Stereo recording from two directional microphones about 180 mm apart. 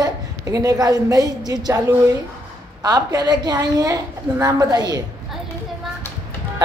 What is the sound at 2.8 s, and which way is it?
A woman's voice, 25° right (ahead or behind).